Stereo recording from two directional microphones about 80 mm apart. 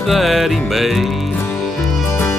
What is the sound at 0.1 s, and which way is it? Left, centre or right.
Music, centre.